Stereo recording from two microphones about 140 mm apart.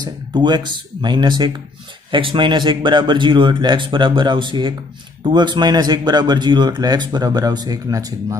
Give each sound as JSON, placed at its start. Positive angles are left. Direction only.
{"t": 0.0, "sound": "speech", "side_deg": -30}